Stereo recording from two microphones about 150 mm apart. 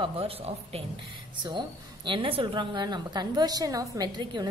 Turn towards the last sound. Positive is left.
turn(degrees=-25)  # may be behind; listen again after turning